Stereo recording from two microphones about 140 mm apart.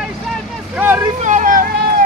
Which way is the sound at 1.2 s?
60° right (ahead or behind).